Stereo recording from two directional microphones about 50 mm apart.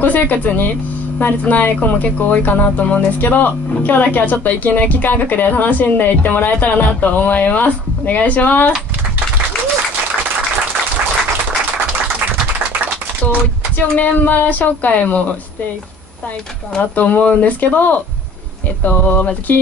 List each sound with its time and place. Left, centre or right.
0.0 s speech: left
13.7 s speech: left
16.9 s speech: left